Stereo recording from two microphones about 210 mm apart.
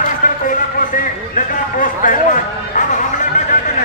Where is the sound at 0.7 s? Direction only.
40° left (ahead or behind).